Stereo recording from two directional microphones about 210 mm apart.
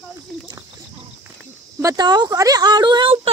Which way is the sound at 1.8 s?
15° right (ahead or behind).